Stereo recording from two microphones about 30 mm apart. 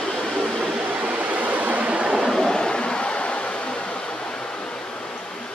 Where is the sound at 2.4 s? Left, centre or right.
Left.